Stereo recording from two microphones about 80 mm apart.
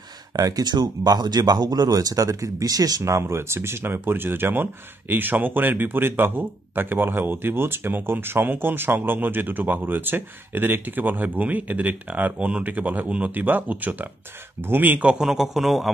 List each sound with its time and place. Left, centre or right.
0.4 s speech: right
3.0 s speech: right; by 15.9 s centre